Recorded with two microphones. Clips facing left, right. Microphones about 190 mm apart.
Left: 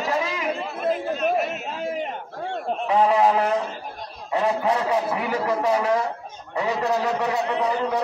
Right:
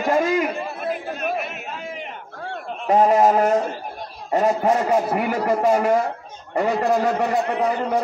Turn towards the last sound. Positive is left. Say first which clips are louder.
# right 2 dB
turn(degrees=-50)  # may be behind; listen again after turning